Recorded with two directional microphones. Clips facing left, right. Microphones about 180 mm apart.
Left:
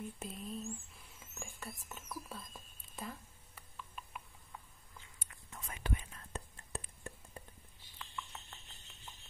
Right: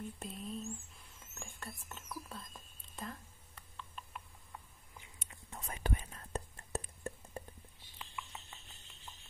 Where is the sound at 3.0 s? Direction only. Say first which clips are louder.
Even; 5° left (ahead or behind).